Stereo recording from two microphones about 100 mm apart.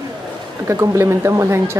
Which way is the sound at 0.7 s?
30° right (ahead or behind).